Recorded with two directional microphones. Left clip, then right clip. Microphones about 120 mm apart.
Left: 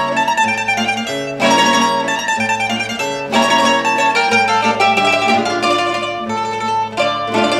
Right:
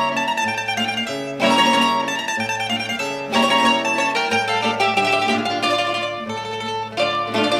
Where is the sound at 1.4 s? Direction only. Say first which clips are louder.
Left 3 dB; 30° right (ahead or behind).